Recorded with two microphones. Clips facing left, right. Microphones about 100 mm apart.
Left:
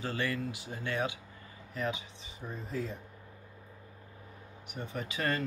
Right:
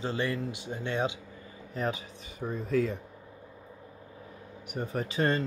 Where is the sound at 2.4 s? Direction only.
65° right (ahead or behind).